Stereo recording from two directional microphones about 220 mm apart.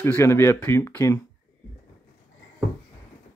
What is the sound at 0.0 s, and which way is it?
Speech, 10° left (ahead or behind).